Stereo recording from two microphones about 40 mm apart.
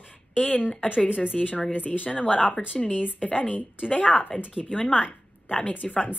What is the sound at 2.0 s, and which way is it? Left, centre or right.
A woman's voice, left.